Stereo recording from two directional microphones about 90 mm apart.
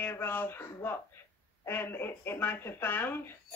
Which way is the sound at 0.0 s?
25° left (ahead or behind).